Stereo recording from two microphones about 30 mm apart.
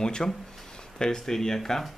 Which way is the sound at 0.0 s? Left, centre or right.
Left.